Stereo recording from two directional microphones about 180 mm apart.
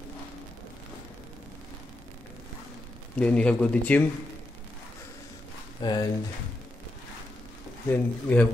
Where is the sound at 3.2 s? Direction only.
5° left (ahead or behind).